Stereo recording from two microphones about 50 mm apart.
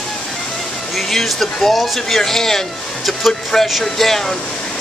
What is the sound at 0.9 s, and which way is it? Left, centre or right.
Speech, centre.